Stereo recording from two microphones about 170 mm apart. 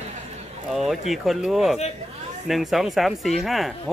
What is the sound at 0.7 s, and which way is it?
Speech, centre (ahead or behind).